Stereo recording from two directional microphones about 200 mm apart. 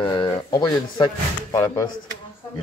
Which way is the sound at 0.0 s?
20° left (ahead or behind).